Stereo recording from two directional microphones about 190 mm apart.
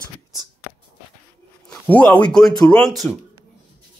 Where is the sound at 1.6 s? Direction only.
5° left (ahead or behind).